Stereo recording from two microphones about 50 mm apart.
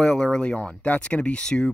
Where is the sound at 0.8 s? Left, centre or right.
Left.